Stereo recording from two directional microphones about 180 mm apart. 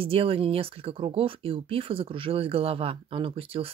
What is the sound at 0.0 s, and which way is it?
Speech, 30° right (ahead or behind).